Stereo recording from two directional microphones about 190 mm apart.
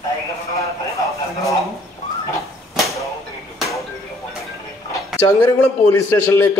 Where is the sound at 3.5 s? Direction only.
Centre (ahead or behind).